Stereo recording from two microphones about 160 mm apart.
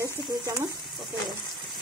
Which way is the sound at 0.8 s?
Centre (ahead or behind).